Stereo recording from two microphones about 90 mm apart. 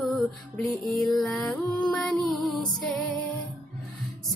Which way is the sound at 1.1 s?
Centre (ahead or behind).